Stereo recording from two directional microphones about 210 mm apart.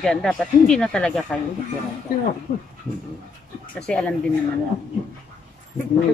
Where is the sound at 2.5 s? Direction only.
30° left (ahead or behind).